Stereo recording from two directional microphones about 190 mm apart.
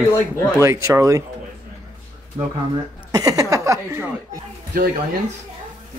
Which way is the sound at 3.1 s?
20° right (ahead or behind).